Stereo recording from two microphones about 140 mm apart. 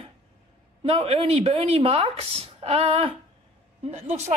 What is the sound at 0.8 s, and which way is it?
A woman's voice, 45° right (ahead or behind).